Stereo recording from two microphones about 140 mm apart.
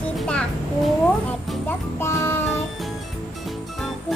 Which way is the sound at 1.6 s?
20° left (ahead or behind).